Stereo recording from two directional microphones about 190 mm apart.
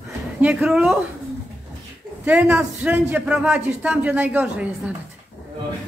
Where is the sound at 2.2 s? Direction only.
5° right (ahead or behind).